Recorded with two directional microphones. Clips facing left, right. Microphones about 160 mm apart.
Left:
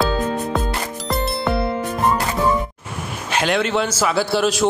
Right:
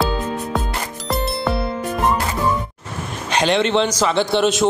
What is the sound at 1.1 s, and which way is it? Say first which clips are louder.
Music: even; centre (ahead or behind).